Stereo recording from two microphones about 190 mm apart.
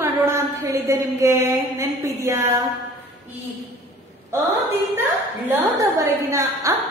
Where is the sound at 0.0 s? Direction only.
15° right (ahead or behind).